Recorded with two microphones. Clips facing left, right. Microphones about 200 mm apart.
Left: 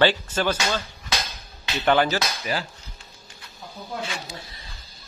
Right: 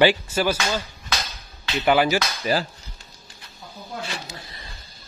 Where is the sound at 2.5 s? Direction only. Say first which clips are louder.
Right 6 dB; 35° right (ahead or behind).